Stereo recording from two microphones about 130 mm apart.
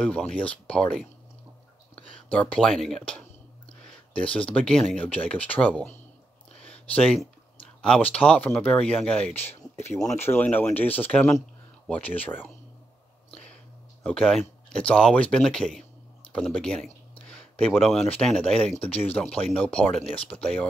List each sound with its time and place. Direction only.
0.0 s speech: 10° left (ahead or behind)
2.0 s whispering: 45° left (ahead or behind)
2.3 s speech: 5° left (ahead or behind)
4.2 s speech: 10° left (ahead or behind)
7.8 s speech: 5° left (ahead or behind)
9.8 s speech: 20° left (ahead or behind)
14.0 s speech: 5° left (ahead or behind)
18.9 s speech: 50° left (ahead or behind)
19.1 s speech: 10° left (ahead or behind)
20.0 s speech: 45° left (ahead or behind)
20.3 s speech: 5° left (ahead or behind)